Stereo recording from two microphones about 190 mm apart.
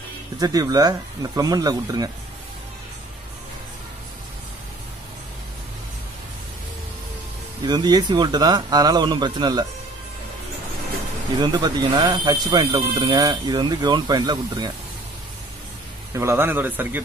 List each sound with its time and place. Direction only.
0.4 s speech: 20° right (ahead or behind)
7.6 s speech: 20° right (ahead or behind)
11.3 s speech: 25° right (ahead or behind)
16.1 s a man's voice: 15° right (ahead or behind)